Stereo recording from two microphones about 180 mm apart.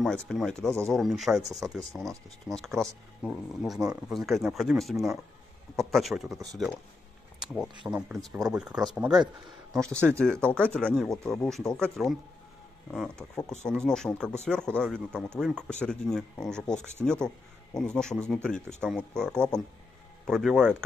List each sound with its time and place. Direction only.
0.0 s speech: 5° left (ahead or behind)
6.3 s speech: 20° right (ahead or behind)
7.3 s a sound: centre (ahead or behind)
7.9 s speech: centre (ahead or behind)